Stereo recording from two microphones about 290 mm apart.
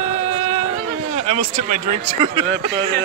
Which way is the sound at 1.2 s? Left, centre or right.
Right.